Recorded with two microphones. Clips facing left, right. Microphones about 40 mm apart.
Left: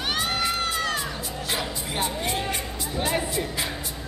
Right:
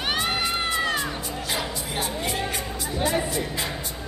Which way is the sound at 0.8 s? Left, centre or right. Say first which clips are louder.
Right 2 dB; right.